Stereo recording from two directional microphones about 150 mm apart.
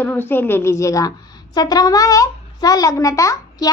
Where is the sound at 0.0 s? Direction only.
15° left (ahead or behind).